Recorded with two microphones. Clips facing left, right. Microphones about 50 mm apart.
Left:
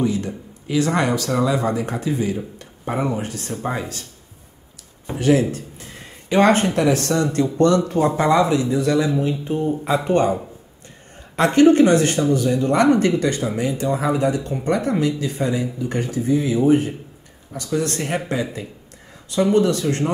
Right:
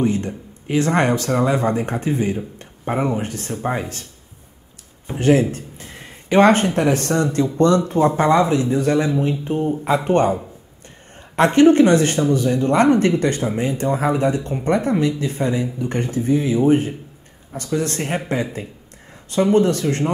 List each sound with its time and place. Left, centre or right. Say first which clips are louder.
0.0 s speech: right 1 dB; right
2.8 s speech: right 2 dB; centre
5.1 s speech: right 1 dB; right
11.3 s speech: right 1 dB; right